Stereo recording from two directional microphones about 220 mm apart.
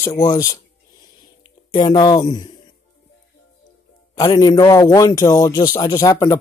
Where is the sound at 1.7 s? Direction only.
20° left (ahead or behind).